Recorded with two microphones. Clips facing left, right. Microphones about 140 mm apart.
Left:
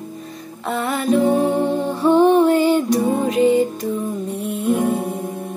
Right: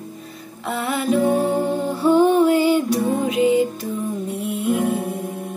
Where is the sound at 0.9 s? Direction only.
5° right (ahead or behind).